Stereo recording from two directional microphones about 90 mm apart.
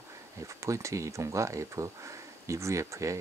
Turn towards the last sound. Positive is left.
turn(degrees=-35)  # may be behind; listen again after turning